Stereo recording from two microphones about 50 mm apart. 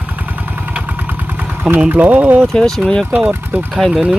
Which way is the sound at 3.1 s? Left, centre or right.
Right.